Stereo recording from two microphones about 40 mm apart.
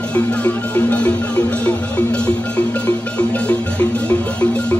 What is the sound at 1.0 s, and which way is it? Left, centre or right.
Music, left.